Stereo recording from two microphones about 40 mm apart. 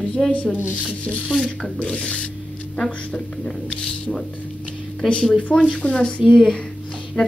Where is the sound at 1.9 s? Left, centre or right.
Left.